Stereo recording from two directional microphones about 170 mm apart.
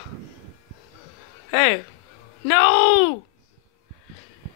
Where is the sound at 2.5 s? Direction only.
55° left (ahead or behind).